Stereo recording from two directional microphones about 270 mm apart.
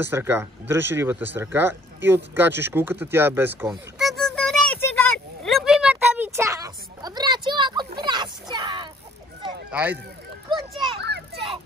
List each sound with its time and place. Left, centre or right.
0.0 s speech: centre
2.0 s a sound: centre
9.7 s speech: centre
11.0 s children playing: right